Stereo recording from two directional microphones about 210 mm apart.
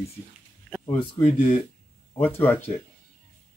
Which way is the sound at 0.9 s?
30° left (ahead or behind).